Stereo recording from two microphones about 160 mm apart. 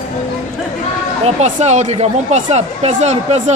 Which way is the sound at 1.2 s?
45° right (ahead or behind).